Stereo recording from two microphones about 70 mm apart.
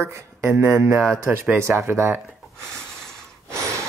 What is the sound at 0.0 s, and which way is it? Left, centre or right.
Speech, right.